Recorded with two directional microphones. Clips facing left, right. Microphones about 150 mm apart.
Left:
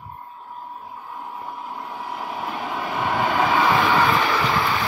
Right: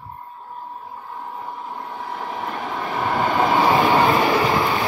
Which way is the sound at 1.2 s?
10° left (ahead or behind).